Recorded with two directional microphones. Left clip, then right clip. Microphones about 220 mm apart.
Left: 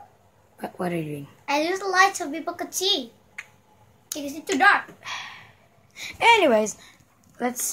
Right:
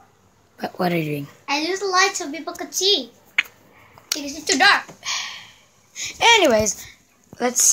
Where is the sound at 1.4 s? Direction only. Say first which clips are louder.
Right 1 dB; 15° left (ahead or behind).